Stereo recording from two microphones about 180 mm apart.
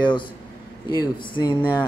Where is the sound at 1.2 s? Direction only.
25° left (ahead or behind).